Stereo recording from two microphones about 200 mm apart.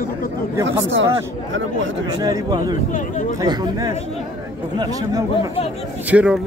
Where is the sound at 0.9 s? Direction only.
70° right (ahead or behind).